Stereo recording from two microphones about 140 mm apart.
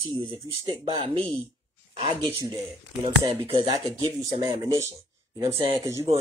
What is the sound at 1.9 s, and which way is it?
Speech, 45° right (ahead or behind).